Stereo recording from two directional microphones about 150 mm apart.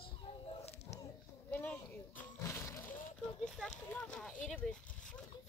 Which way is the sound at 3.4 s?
5° left (ahead or behind).